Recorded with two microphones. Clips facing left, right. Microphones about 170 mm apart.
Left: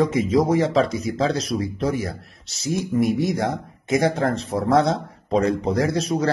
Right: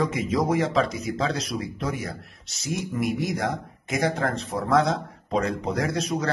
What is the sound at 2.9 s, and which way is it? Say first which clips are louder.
Speech: left 6 dB; 25° left (ahead or behind).